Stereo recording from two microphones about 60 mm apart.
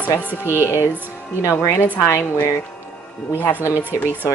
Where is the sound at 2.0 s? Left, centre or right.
Left.